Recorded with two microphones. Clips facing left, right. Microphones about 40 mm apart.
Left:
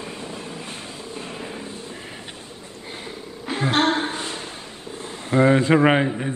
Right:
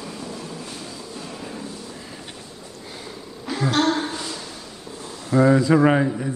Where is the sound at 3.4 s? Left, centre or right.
Left.